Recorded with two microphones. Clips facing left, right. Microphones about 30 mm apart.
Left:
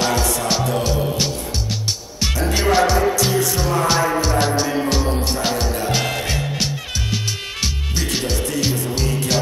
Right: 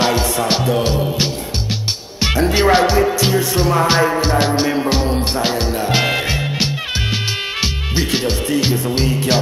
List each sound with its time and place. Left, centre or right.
0.0 s music: right
7.6 s speech: right